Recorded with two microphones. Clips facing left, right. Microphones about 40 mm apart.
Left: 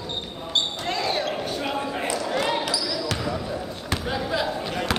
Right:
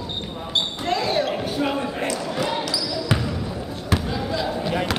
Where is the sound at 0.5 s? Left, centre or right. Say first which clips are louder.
Right 2 dB; centre.